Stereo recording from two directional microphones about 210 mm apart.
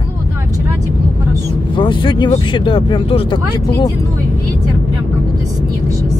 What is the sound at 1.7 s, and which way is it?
Speech, 25° left (ahead or behind).